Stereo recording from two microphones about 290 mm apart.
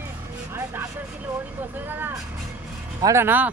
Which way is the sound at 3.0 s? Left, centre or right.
Centre.